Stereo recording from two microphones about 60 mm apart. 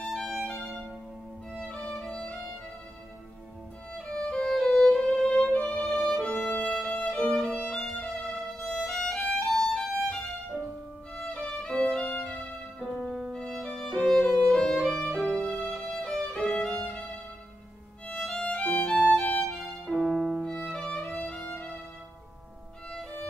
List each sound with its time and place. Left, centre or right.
0.0 s music: centre
1.9 s violin: centre
4.1 s music: centre
7.8 s violin: centre
8.2 s violin: centre
11.3 s music: centre
11.7 s violin: centre
13.3 s music: centre
13.8 s violin: centre; by 18.9 s left
18.9 s violin: centre
21.2 s music: centre